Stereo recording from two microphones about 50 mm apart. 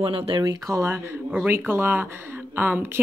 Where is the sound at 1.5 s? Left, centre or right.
Right.